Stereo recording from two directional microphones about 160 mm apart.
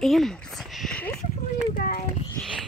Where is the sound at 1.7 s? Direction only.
65° left (ahead or behind).